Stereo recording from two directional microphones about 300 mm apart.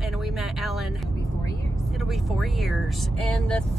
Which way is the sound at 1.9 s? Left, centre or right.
Centre.